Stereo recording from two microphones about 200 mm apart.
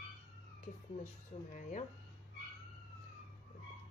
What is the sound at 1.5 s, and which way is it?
Speech, 35° left (ahead or behind).